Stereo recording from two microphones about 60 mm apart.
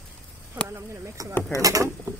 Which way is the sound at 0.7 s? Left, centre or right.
Right.